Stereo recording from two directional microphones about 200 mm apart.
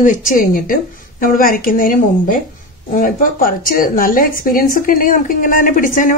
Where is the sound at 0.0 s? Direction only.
40° left (ahead or behind).